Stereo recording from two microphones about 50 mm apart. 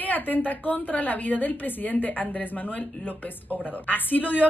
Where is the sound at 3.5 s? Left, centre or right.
Left.